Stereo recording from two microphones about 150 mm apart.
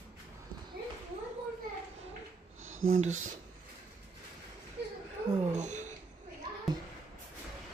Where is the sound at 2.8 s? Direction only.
50° right (ahead or behind).